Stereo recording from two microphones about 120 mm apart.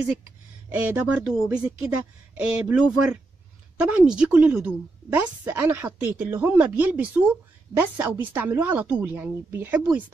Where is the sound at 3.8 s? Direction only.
10° right (ahead or behind).